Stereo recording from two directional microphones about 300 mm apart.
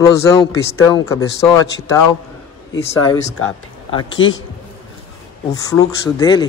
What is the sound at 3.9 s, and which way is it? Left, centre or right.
Speech, centre.